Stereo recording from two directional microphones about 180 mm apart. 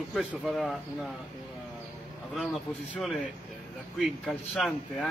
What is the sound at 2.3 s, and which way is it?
Speech, centre (ahead or behind).